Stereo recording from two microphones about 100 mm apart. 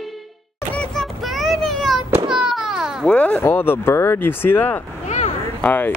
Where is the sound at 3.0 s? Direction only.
15° left (ahead or behind).